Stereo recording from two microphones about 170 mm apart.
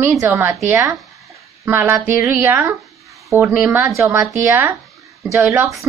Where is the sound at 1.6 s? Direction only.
10° right (ahead or behind).